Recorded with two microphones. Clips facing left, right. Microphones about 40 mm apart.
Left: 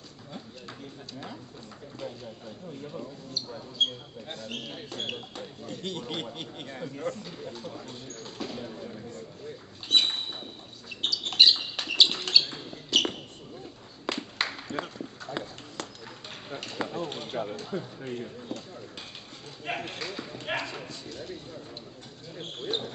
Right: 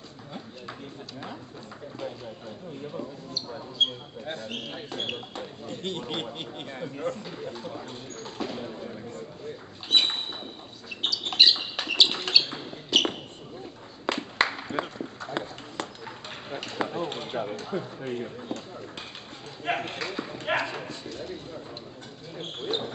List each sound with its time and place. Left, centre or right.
2.0 s speech: centre
3.8 s a man's voice: centre
4.7 s speech: centre
5.7 s a man's voice: right
6.1 s speech: right
9.8 s a sound: centre
11.0 s rodents: centre
12.1 s a sound: centre
12.9 s basketball bounce: centre
14.1 s a sound: centre
19.6 s speech: centre
22.7 s a man's voice: centre